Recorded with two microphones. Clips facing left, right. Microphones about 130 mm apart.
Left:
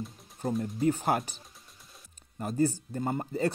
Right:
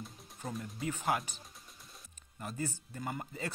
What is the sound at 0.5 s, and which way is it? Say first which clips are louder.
Speech: left 11 dB; 30° left (ahead or behind).